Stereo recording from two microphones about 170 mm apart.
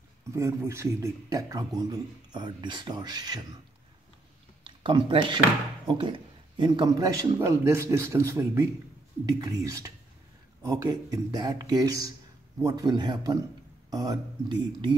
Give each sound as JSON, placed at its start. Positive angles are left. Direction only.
{"t": 0.3, "sound": "a man's voice", "side_deg": -15}
{"t": 4.6, "sound": "a man's voice", "side_deg": -30}